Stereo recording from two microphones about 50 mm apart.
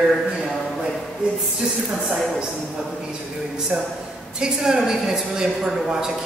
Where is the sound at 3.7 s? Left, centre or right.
Centre.